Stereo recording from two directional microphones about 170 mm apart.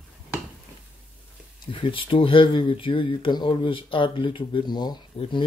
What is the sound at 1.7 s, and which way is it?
Speech, 30° left (ahead or behind).